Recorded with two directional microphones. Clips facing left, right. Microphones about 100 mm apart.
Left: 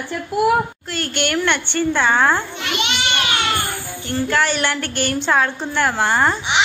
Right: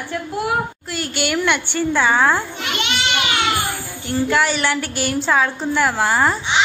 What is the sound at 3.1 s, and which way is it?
A child's voice, 15° right (ahead or behind).